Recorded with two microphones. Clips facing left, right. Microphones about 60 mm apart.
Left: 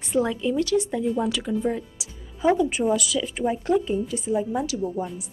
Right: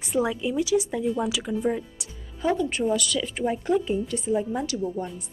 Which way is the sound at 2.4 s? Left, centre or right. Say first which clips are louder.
Left 3 dB; centre.